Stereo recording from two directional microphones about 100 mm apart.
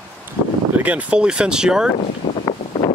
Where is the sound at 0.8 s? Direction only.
15° right (ahead or behind).